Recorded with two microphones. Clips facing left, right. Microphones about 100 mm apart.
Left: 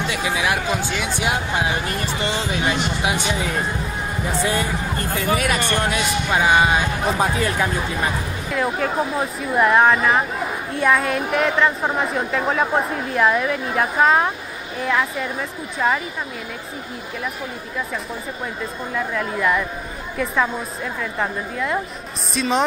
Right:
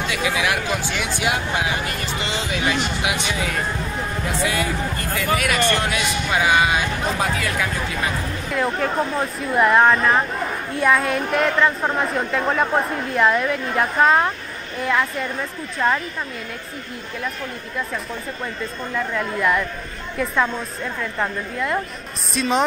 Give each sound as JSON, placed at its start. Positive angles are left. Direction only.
{"t": 0.1, "sound": "speech", "side_deg": 25}
{"t": 2.6, "sound": "speech", "side_deg": 30}
{"t": 4.4, "sound": "speech", "side_deg": 35}
{"t": 8.5, "sound": "speech", "side_deg": 0}
{"t": 17.7, "sound": "speech", "side_deg": 0}